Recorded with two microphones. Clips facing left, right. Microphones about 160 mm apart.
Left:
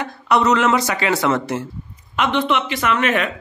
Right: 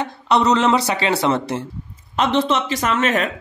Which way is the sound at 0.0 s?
30° right (ahead or behind).